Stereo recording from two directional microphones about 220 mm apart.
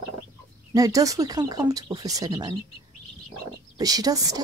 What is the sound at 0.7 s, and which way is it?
Speech, 15° right (ahead or behind).